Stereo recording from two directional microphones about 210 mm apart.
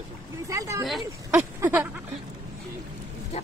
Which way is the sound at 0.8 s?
Centre (ahead or behind).